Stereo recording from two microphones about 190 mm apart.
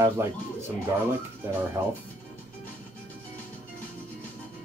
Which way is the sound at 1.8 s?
15° right (ahead or behind).